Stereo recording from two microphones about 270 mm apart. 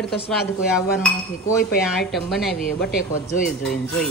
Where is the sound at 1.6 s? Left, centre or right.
Left.